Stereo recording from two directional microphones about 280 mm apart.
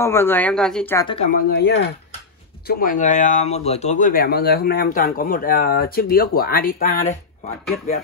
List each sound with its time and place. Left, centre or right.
0.0 s speech: centre
1.0 s speech: left
1.5 s speech: left